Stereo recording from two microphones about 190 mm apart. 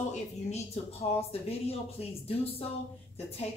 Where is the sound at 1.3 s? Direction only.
30° left (ahead or behind).